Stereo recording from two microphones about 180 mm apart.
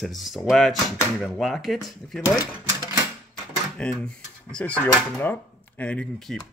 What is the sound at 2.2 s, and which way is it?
Speech, 20° left (ahead or behind).